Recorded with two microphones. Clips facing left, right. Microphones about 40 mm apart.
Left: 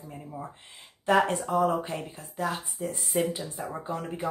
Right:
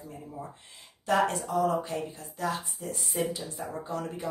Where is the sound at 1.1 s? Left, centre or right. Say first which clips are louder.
Left 3 dB; left.